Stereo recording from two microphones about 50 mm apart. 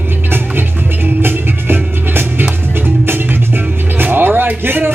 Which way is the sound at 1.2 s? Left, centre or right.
Right.